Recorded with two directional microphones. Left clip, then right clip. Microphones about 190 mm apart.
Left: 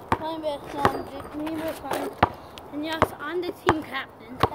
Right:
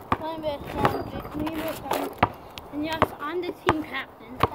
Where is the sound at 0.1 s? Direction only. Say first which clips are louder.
Left 1 dB; 15° left (ahead or behind).